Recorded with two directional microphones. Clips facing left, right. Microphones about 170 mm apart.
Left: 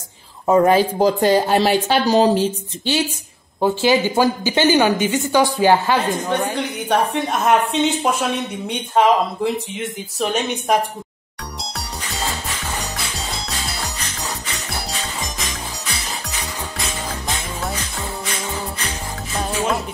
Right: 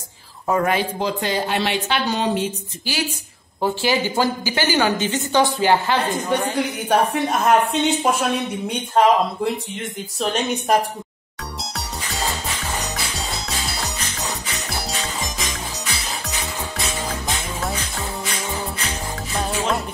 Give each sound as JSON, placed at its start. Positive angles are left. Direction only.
{"t": 0.5, "sound": "speech", "side_deg": 30}
{"t": 3.6, "sound": "a woman's voice", "side_deg": 15}
{"t": 6.9, "sound": "speech", "side_deg": 0}
{"t": 14.7, "sound": "music", "side_deg": 0}
{"t": 19.3, "sound": "music", "side_deg": 0}